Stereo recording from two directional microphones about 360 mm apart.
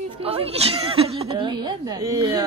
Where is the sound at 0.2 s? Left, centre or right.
Centre.